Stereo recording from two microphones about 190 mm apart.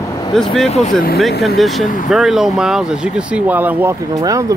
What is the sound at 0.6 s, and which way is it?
Speech, 35° left (ahead or behind).